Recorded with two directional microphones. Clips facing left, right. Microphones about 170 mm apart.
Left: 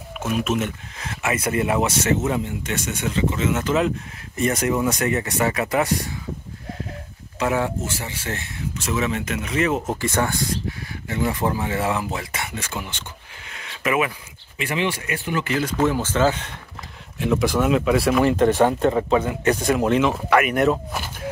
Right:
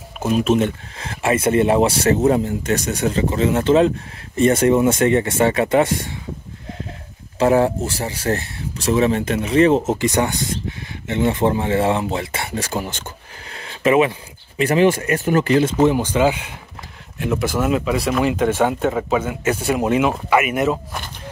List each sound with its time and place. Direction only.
0.2 s speech: 30° right (ahead or behind)
7.3 s speech: 35° right (ahead or behind)
14.6 s speech: 40° right (ahead or behind)
15.7 s speech: 20° right (ahead or behind); by 21.1 s centre (ahead or behind)